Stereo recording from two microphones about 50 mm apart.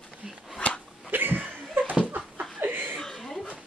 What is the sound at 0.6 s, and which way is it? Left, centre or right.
Dog, left.